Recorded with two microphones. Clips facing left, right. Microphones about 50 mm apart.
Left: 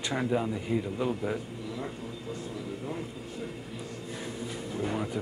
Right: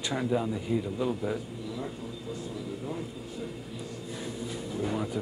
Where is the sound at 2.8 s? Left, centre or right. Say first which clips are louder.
Even; left.